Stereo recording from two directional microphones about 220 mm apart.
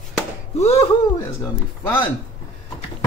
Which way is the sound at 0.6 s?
30° left (ahead or behind).